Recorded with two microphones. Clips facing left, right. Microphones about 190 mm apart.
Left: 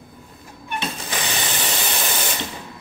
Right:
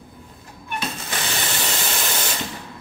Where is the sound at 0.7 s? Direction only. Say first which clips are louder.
Left 1 dB; 15° left (ahead or behind).